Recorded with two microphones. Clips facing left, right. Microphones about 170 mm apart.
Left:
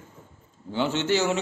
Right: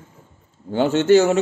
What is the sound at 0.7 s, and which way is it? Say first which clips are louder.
Speech: right 9 dB; 50° right (ahead or behind).